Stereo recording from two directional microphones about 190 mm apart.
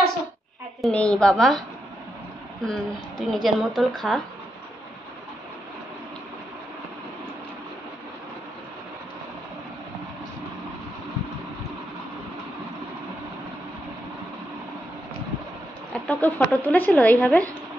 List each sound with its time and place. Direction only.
0.8 s speech: 5° left (ahead or behind)
2.6 s speech: 5° left (ahead or behind)
15.9 s speech: 10° left (ahead or behind)